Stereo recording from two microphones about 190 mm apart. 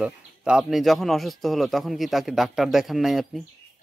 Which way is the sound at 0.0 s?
5° right (ahead or behind).